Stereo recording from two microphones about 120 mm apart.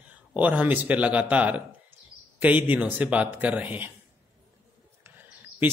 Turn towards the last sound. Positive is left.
turn(degrees=-15)  # may be behind; listen again after turning